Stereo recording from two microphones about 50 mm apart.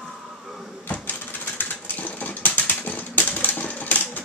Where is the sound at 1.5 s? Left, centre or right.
Left.